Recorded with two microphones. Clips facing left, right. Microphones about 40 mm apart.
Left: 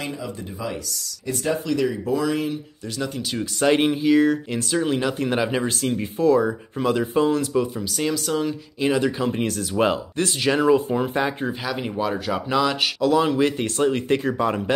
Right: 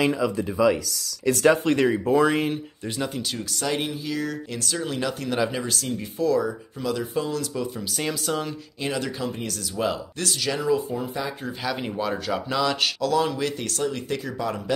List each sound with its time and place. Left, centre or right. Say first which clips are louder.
1.2 s speech: right 6 dB; right
1.6 s speech: right 2 dB; right
3.6 s speech: left 10 dB; left
7.8 s speech: left 3 dB; centre
8.8 s speech: left 7 dB; centre
9.2 s speech: left 6 dB; left
10.6 s speech: left 6 dB; left
11.6 s speech: right 1 dB; centre; by 14.6 s left